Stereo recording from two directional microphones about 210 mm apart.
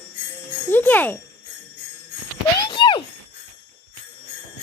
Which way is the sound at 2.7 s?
20° left (ahead or behind).